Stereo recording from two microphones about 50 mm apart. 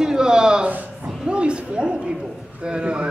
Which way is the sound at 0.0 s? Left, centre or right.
Centre.